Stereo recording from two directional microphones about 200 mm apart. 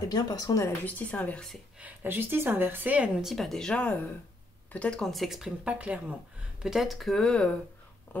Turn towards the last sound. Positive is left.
turn(degrees=5)  # may be behind; listen again after turning